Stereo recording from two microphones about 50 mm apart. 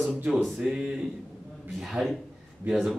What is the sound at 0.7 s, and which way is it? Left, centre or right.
Speech, centre.